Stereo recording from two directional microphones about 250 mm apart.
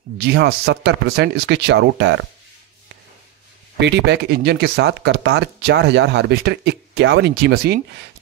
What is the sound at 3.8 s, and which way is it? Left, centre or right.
Speech, right.